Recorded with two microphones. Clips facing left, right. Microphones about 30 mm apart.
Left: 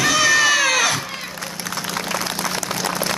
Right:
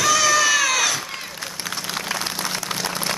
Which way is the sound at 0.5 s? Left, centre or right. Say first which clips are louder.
Left 2 dB; centre.